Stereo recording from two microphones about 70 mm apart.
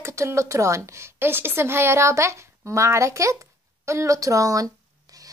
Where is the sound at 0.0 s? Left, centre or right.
Right.